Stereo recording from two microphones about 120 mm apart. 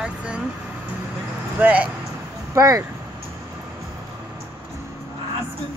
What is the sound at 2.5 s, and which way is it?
Speech, 30° right (ahead or behind).